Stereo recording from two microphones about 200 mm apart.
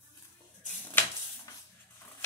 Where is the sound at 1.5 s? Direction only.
15° left (ahead or behind).